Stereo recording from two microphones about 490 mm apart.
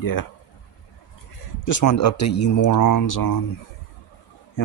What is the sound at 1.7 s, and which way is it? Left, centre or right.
Speech, left.